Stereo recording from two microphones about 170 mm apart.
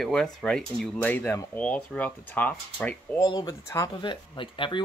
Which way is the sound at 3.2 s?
25° left (ahead or behind).